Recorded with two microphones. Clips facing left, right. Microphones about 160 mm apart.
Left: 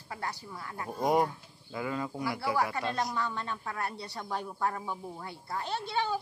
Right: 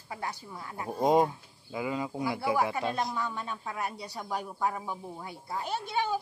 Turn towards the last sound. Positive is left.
turn(degrees=-15)  # may be behind; listen again after turning